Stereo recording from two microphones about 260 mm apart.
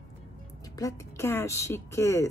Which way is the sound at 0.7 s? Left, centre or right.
Centre.